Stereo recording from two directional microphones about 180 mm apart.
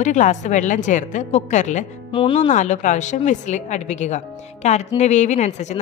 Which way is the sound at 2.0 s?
30° left (ahead or behind).